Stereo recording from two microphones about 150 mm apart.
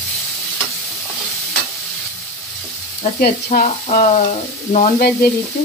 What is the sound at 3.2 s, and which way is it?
Speech, 60° left (ahead or behind).